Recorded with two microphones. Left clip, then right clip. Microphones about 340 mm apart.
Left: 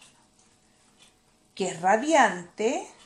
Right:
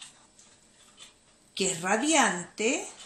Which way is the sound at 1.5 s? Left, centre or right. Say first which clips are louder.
Left 4 dB; left.